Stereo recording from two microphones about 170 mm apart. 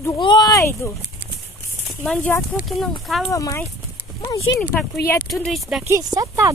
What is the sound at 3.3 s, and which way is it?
Speech, 20° left (ahead or behind).